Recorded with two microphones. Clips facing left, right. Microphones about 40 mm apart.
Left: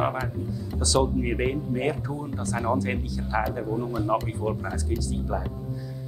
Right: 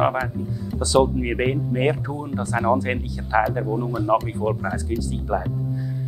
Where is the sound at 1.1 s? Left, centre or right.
Right.